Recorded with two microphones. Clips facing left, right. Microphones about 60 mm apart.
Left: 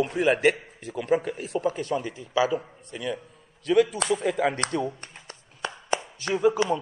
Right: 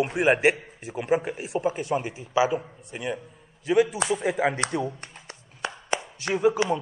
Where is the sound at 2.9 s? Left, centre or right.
Right.